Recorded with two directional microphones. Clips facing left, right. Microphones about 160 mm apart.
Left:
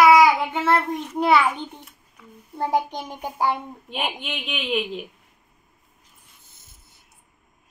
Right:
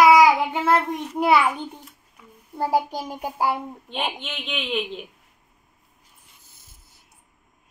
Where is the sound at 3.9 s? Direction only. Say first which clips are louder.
Left 1 dB; 10° left (ahead or behind).